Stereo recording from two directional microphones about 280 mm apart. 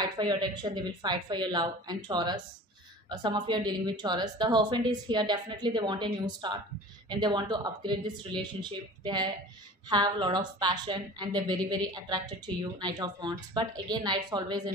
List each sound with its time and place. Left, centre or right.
0.0 s a woman's voice: centre